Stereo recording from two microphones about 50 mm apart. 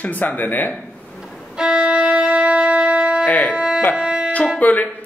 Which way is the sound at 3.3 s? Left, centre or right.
Left.